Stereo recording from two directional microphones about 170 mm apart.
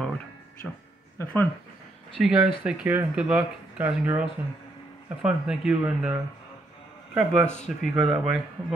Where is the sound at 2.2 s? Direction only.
5° right (ahead or behind).